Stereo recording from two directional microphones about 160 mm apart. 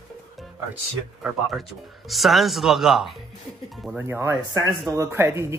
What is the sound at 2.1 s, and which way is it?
Speech, centre (ahead or behind).